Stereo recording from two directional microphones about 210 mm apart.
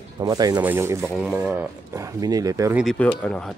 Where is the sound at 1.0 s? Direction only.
Centre (ahead or behind).